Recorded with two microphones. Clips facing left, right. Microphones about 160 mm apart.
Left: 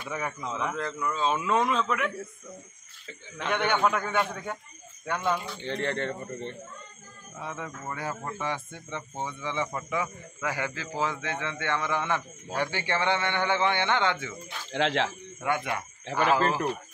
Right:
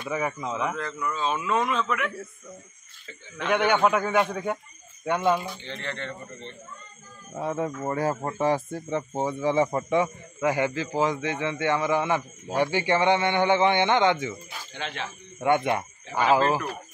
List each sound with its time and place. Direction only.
0.0 s a man's voice: 5° right (ahead or behind)
0.7 s speech: 25° left (ahead or behind)
3.4 s a man's voice: 10° right (ahead or behind)
5.6 s a man's voice: 50° left (ahead or behind)
7.3 s speech: 40° right (ahead or behind); by 14.3 s 15° right (ahead or behind)
14.7 s speech: 90° left
15.4 s speech: 25° right (ahead or behind)
16.2 s a man's voice: 15° right (ahead or behind)